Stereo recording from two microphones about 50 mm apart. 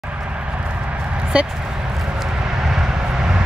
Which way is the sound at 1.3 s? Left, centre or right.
Right.